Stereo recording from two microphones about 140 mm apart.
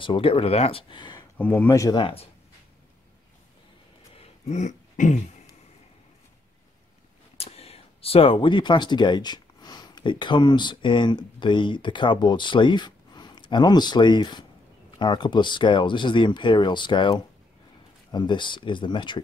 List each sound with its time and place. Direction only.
0.0 s speech: 40° left (ahead or behind)
1.4 s speech: 10° left (ahead or behind)
2.0 s speech: 40° left (ahead or behind)
4.1 s throat clearing: 50° left (ahead or behind)
7.3 s speech: 45° left (ahead or behind)